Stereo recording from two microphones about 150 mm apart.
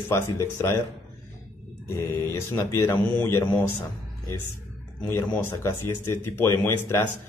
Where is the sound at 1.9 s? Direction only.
15° left (ahead or behind).